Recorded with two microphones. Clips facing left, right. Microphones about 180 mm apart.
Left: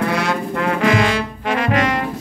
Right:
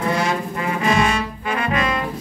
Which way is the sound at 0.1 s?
70° left (ahead or behind).